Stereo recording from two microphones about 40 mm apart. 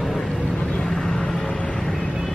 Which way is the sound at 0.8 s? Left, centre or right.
Centre.